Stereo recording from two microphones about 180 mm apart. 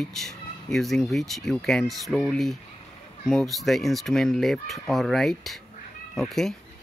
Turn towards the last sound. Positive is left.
turn(degrees=0)  # may be behind; listen again after turning